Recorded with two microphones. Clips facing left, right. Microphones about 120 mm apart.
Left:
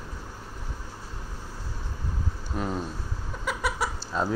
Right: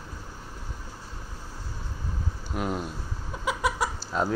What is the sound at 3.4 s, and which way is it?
Chicken, centre (ahead or behind).